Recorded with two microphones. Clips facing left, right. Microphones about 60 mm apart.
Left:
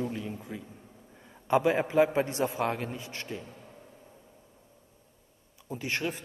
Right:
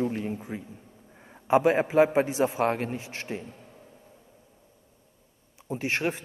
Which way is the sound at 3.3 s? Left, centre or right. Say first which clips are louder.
Right 5 dB; right.